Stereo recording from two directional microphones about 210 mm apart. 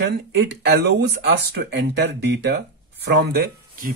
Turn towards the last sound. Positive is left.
turn(degrees=-45)  # may be behind; listen again after turning